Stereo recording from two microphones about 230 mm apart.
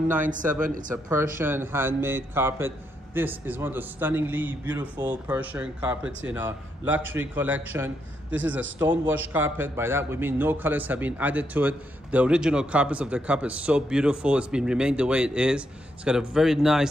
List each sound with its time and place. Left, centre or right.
0.2 s speech: right
0.9 s a man's voice: centre